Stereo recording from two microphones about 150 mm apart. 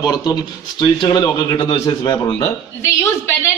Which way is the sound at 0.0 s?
25° left (ahead or behind).